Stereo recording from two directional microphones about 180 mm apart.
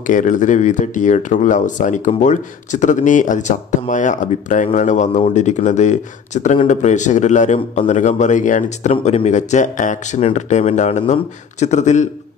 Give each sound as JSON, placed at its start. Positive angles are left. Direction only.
{"t": 0.0, "sound": "speech", "side_deg": 45}